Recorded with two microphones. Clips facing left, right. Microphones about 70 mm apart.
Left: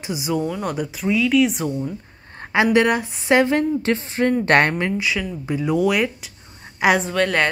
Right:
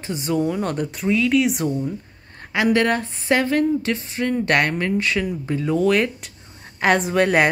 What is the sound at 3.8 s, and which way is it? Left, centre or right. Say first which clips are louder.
Speech: left 4 dB; left.